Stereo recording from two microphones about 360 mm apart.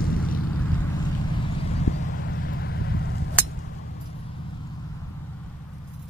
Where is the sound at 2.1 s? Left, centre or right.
Left.